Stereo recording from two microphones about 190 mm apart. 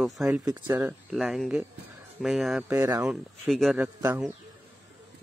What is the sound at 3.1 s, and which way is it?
Speech, centre (ahead or behind).